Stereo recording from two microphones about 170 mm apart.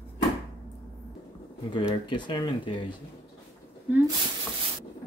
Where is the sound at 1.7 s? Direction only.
25° left (ahead or behind).